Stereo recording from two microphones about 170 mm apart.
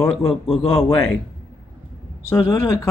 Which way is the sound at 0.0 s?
5° left (ahead or behind).